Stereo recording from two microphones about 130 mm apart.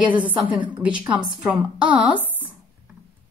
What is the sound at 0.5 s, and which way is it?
Speech, 40° right (ahead or behind).